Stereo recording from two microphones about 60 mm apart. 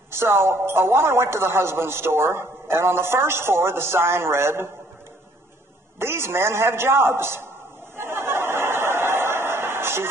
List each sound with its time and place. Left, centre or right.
0.1 s speech: right
5.9 s speech: right
7.9 s a sound: right